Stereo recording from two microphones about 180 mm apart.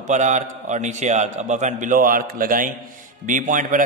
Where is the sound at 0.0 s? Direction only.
40° right (ahead or behind).